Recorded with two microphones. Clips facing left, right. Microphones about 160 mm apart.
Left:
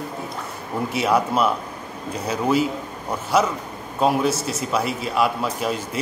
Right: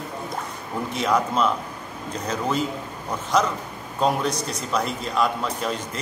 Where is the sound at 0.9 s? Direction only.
10° left (ahead or behind).